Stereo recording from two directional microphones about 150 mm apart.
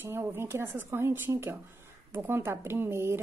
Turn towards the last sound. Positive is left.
turn(degrees=-15)  # may be behind; listen again after turning